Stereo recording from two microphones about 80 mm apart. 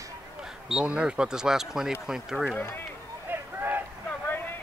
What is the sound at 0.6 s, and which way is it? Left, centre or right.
Speech, centre.